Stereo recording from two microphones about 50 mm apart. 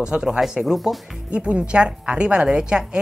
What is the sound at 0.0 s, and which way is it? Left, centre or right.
A woman's voice, centre.